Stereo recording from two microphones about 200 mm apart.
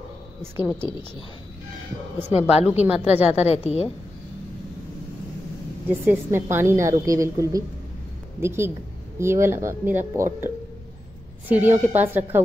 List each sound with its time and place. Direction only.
2.1 s a woman's voice: 10° right (ahead or behind)
3.5 s a woman's voice: 30° left (ahead or behind)
5.9 s a woman's voice: 10° right (ahead or behind)